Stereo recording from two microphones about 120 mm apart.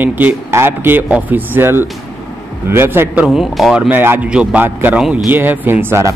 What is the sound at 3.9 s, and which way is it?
A man's voice, 15° right (ahead or behind).